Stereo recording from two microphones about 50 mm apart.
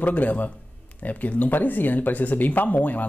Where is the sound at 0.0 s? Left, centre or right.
Left.